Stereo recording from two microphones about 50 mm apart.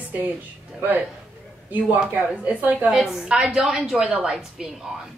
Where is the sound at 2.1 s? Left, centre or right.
Right.